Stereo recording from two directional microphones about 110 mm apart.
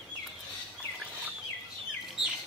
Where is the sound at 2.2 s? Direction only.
5° right (ahead or behind).